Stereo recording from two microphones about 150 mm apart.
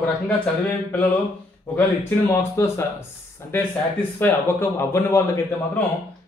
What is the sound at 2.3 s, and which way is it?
A man's voice, 15° left (ahead or behind).